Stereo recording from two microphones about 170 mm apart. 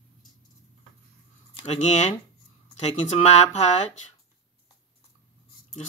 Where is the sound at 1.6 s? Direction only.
40° left (ahead or behind).